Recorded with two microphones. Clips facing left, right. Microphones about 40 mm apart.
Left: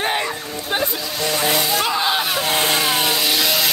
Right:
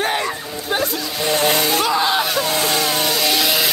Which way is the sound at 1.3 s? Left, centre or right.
Right.